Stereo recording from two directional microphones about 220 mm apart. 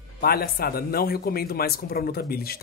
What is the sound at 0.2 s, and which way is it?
Speech, 45° left (ahead or behind).